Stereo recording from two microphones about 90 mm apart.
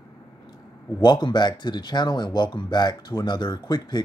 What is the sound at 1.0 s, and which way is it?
Speech, 55° left (ahead or behind).